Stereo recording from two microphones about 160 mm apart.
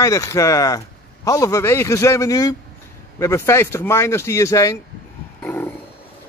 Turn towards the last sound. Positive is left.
turn(degrees=10)  # may be behind; listen again after turning